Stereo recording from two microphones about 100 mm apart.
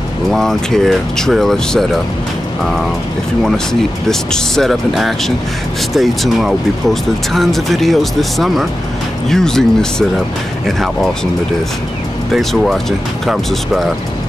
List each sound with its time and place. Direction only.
0.3 s speech: 5° left (ahead or behind)
4.1 s speech: 5° left (ahead or behind)
12.3 s speech: centre (ahead or behind)